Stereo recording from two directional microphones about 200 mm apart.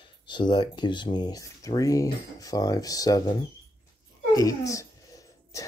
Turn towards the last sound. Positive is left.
turn(degrees=15)  # may be behind; listen again after turning